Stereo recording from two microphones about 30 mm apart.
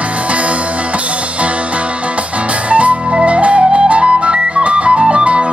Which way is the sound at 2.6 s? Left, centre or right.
Right.